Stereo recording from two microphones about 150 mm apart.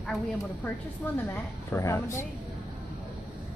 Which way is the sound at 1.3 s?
15° left (ahead or behind).